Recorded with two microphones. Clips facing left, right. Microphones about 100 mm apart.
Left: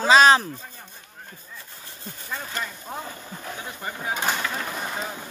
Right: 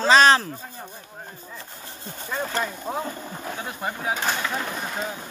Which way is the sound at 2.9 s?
30° right (ahead or behind).